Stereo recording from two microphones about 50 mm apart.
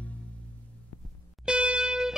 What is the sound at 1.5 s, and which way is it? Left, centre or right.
Music, right.